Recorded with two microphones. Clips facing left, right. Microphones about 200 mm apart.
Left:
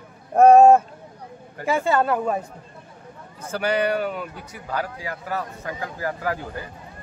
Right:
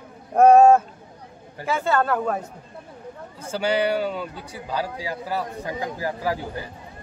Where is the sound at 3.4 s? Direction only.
30° right (ahead or behind).